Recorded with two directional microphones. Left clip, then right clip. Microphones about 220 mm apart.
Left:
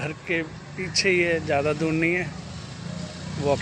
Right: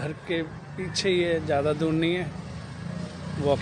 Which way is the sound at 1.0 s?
35° right (ahead or behind).